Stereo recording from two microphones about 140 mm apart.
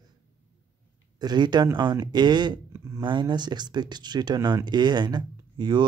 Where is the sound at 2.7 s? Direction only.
20° right (ahead or behind).